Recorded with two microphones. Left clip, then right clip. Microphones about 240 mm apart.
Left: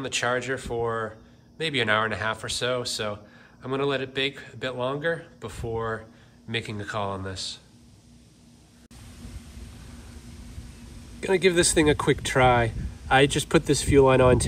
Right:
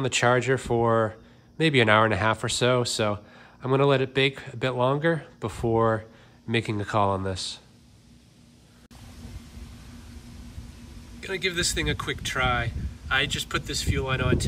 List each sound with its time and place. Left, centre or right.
0.0 s speech: right
11.1 s speech: centre